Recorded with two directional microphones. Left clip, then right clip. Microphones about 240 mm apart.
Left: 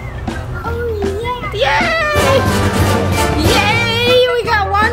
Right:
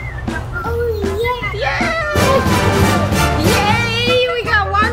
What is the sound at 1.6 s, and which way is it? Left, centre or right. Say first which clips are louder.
Music: left 7 dB; left.